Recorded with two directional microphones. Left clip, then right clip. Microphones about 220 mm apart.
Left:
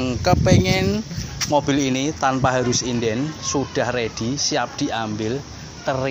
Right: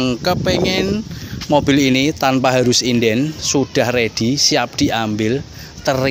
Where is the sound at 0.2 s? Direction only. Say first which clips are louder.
Left 2 dB; 20° right (ahead or behind).